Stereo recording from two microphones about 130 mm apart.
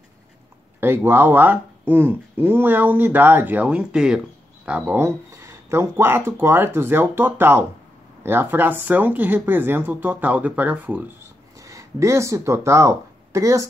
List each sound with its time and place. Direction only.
0.7 s speech: 15° right (ahead or behind)
11.6 s speech: 25° right (ahead or behind)